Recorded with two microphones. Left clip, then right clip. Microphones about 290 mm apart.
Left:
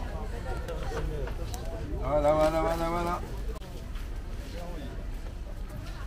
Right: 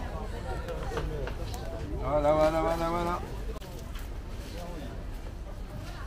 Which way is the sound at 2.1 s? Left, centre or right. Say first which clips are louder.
Even; left.